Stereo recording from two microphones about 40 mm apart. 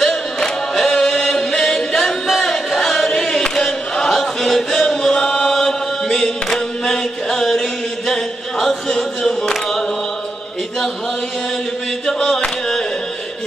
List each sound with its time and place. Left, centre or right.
0.0 s chant: centre
8.1 s a sound: centre
12.1 s chant: centre